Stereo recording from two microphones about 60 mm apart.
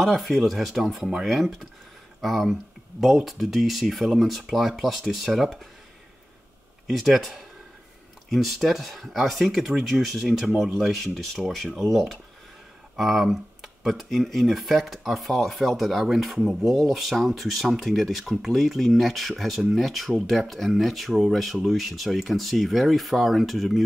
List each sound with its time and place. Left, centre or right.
0.0 s speech: centre
6.9 s speech: centre